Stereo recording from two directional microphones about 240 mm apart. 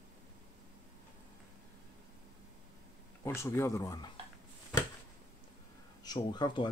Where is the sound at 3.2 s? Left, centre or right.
Centre.